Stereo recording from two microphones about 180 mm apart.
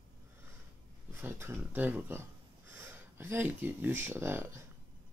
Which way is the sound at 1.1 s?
15° right (ahead or behind).